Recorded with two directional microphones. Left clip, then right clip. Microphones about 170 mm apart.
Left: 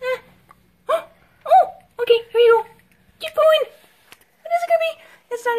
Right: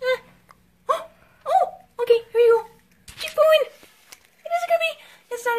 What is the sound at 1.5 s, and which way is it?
Whimper, 20° left (ahead or behind).